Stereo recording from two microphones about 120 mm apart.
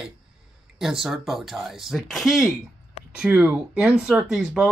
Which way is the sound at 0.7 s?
5° right (ahead or behind).